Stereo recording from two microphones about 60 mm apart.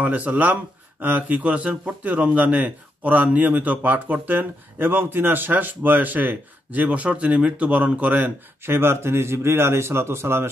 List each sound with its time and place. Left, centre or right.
0.0 s a man's voice: right
8.6 s speech: right